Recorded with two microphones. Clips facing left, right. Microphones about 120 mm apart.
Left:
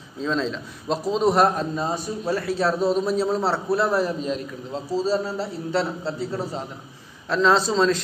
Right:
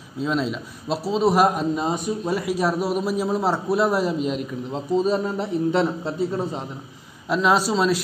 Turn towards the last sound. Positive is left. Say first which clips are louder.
# even
turn(degrees=-10)  # may be behind; listen again after turning